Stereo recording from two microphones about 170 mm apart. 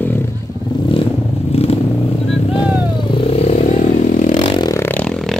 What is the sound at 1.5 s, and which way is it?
Vehicle, 35° left (ahead or behind).